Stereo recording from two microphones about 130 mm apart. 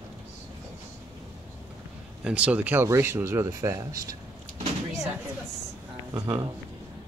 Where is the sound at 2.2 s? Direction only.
10° right (ahead or behind); by 4.2 s 25° right (ahead or behind).